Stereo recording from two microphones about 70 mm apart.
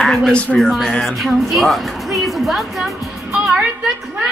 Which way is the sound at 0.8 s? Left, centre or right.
Centre.